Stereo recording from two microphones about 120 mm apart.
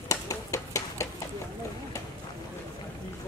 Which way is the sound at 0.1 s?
25° left (ahead or behind).